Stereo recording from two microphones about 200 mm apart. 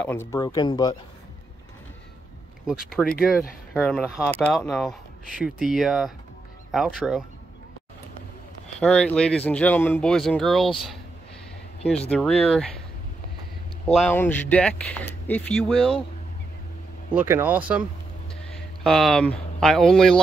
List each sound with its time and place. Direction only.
0.1 s speech: 15° left (ahead or behind)
3.0 s speech: centre (ahead or behind)
8.7 s speech: 5° left (ahead or behind)
12.1 s speech: 5° left (ahead or behind)
13.8 s speech: 5° left (ahead or behind)
17.1 s speech: 10° right (ahead or behind)